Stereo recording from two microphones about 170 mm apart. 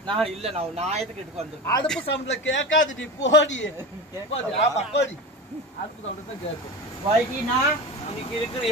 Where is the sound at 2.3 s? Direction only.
90° left.